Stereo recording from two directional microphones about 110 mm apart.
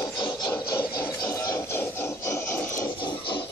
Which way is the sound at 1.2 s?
30° left (ahead or behind).